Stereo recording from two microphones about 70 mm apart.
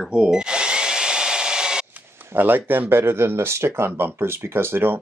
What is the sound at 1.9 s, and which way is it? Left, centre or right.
Speech, right.